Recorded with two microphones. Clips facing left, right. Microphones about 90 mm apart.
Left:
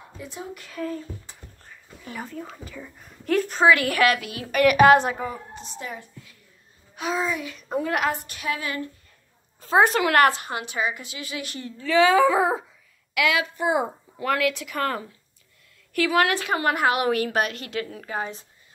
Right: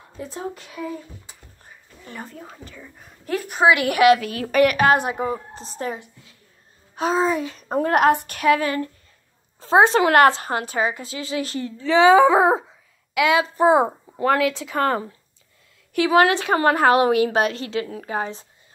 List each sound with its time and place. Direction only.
0.2 s a woman's voice: 35° right (ahead or behind)
0.7 s a sound: 15° right (ahead or behind)
2.0 s a woman's voice: centre (ahead or behind); by 4.2 s 20° right (ahead or behind)
4.2 s a woman's voice: 40° right (ahead or behind)
4.9 s speech: 10° right (ahead or behind)
5.2 s a woman's voice: 30° right (ahead or behind)
7.0 s speech: 35° right (ahead or behind); by 8.6 s 55° right (ahead or behind)
8.6 s a woman's voice: 35° right (ahead or behind)
9.6 s a woman's voice: 25° right (ahead or behind)
16.5 s a woman's voice: 35° right (ahead or behind)
17.1 s a woman's voice: 25° right (ahead or behind)